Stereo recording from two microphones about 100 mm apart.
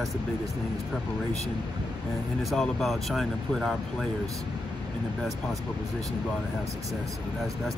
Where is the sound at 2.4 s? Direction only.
Centre (ahead or behind).